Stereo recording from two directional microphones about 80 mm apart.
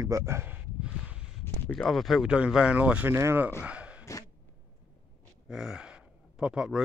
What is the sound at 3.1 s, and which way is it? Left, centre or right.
Speech, right.